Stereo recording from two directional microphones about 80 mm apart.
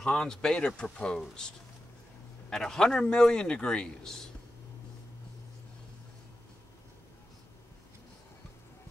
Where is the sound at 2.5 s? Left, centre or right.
Centre.